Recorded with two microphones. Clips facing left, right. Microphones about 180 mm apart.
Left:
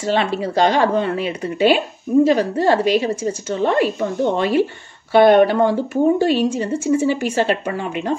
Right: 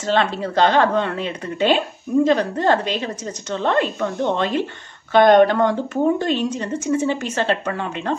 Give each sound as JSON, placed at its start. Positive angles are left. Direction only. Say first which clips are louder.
{"t": 0.0, "sound": "speech", "louder": "left 1 dB", "side_deg": 10}